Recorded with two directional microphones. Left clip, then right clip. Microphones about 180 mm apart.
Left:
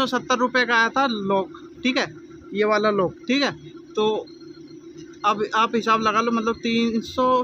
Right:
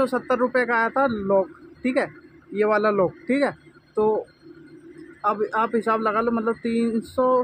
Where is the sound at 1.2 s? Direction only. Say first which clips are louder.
Right 2 dB; 15° left (ahead or behind).